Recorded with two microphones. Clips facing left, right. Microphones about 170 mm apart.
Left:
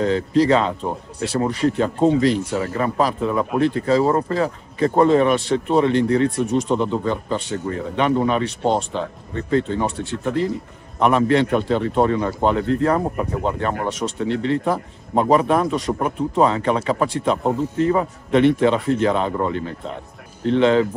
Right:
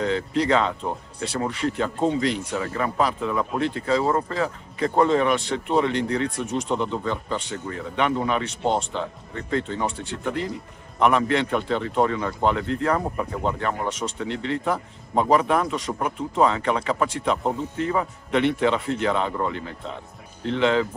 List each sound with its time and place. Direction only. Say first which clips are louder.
0.0 s speech: left 6 dB; 35° left (ahead or behind)
14.0 s speech: left 4 dB; 20° left (ahead or behind)
14.4 s speech: left 2 dB; 30° left (ahead or behind)